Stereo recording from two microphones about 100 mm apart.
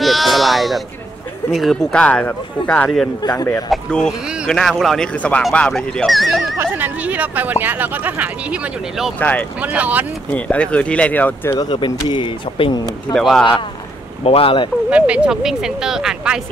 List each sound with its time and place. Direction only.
0.0 s sheep: centre (ahead or behind)
1.5 s speech: centre (ahead or behind)
3.2 s speech: 40° left (ahead or behind)
3.7 s speech: 10° left (ahead or behind)
6.6 s speech: 15° right (ahead or behind)
9.2 s speech: 15° left (ahead or behind)
9.6 s speech: 15° right (ahead or behind)
10.3 s speech: 15° left (ahead or behind)
11.5 s speech: 45° left (ahead or behind); by 12.7 s 60° left (ahead or behind)
13.1 s speech: centre (ahead or behind)
14.2 s speech: 70° left (ahead or behind)
14.9 s speech: 10° right (ahead or behind)